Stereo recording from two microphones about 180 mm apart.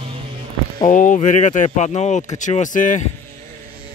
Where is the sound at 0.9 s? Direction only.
45° left (ahead or behind).